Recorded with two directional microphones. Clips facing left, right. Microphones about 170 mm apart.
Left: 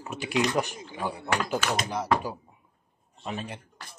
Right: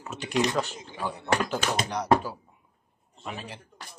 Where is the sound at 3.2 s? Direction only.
20° left (ahead or behind).